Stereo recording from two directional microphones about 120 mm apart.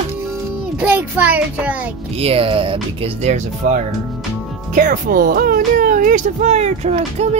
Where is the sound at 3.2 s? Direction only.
90° right.